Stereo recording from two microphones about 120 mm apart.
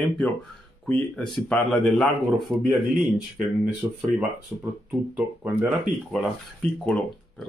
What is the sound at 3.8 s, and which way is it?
Speech, 20° right (ahead or behind).